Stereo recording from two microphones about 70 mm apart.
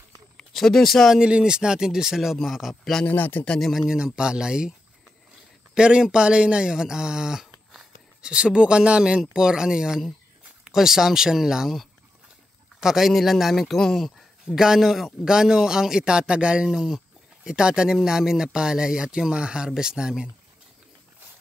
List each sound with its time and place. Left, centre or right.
0.4 s speech: centre
1.2 s a man's voice: centre
3.1 s a man's voice: left
3.4 s a man's voice: centre
3.8 s speech: centre
5.8 s a man's voice: centre